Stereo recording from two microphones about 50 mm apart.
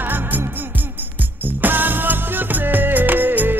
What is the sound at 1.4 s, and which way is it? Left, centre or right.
Music, right.